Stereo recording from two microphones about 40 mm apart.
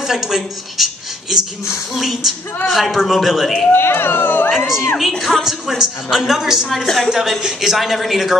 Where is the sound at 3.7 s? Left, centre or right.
Left.